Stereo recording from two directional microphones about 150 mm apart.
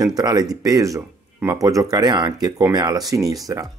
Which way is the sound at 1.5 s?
25° right (ahead or behind).